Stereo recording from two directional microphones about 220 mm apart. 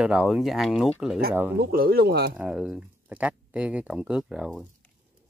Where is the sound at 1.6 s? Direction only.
45° right (ahead or behind).